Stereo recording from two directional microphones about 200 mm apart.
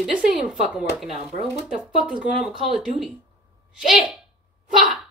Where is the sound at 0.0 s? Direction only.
5° right (ahead or behind).